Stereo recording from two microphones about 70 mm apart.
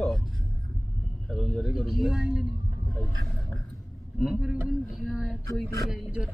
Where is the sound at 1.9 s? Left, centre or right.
Centre.